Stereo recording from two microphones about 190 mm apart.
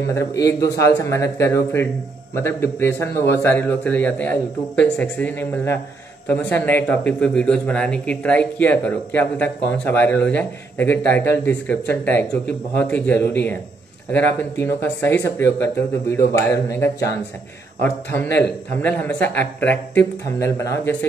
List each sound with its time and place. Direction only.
0.1 s speech: 15° left (ahead or behind)
0.5 s a man's voice: 65° left (ahead or behind)
0.7 s speech: 15° left (ahead or behind)